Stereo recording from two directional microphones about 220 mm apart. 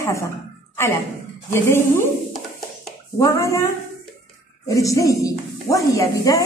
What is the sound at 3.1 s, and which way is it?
A woman's voice, 15° left (ahead or behind).